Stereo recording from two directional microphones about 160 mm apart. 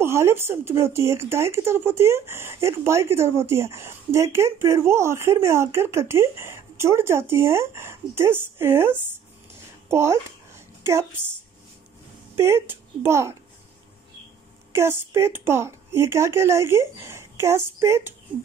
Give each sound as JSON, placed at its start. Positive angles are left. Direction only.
{"t": 0.0, "sound": "speech", "side_deg": -15}
{"t": 9.8, "sound": "a sound", "side_deg": -15}
{"t": 12.4, "sound": "speech", "side_deg": -15}
{"t": 14.7, "sound": "speech", "side_deg": -15}